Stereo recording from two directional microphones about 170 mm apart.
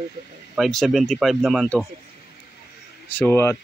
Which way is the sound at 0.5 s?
Centre (ahead or behind).